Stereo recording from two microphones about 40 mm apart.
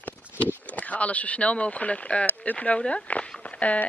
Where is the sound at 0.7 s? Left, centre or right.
Left.